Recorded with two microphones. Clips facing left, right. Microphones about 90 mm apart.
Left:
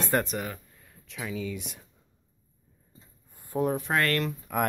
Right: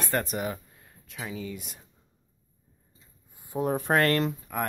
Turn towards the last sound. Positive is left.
turn(degrees=5)  # may be behind; listen again after turning